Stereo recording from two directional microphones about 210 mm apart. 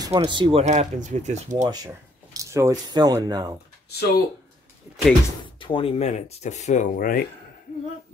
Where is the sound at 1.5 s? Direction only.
20° right (ahead or behind).